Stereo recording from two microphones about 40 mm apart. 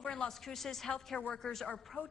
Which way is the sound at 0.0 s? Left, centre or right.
Left.